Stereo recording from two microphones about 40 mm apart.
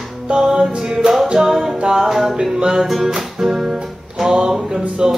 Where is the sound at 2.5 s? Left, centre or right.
Centre.